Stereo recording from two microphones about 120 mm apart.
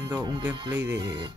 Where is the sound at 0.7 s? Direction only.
20° right (ahead or behind).